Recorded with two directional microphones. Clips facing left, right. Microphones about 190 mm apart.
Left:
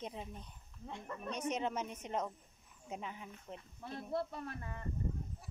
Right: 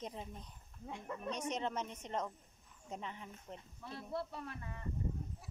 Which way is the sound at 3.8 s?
45° left (ahead or behind).